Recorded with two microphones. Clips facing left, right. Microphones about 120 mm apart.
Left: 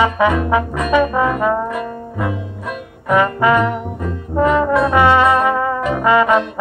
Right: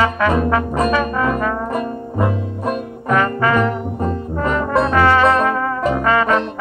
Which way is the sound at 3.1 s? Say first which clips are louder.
Left 3 dB; 15° left (ahead or behind).